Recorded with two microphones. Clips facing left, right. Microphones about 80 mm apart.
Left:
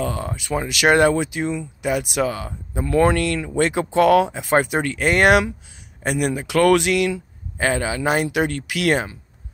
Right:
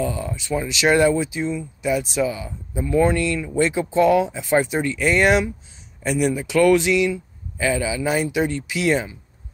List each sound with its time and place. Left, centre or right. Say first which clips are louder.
0.0 s speech: even; left